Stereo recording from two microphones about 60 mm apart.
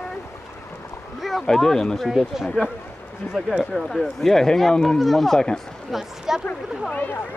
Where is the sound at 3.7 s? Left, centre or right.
Centre.